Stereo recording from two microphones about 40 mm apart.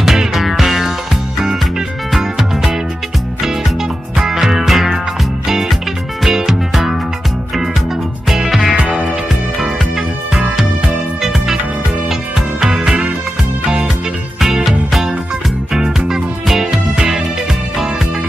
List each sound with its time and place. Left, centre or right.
0.0 s music: centre
2.1 s music: centre
4.3 s music: centre
8.7 s music: right
9.3 s music: centre
12.7 s music: right
14.4 s music: centre